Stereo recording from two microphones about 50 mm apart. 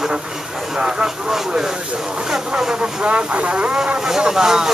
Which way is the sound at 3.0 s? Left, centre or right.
Right.